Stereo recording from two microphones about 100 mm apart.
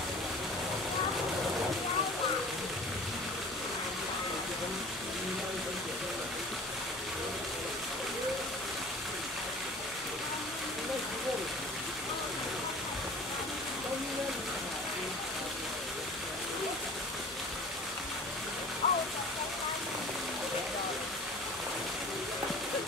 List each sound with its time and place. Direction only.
18.8 s vehicle: 90° left